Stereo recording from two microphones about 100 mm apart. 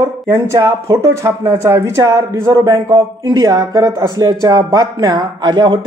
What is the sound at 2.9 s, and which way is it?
Speech, 55° right (ahead or behind).